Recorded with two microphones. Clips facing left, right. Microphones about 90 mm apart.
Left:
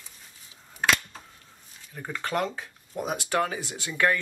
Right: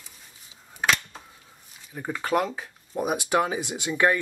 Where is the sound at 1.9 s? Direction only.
15° right (ahead or behind).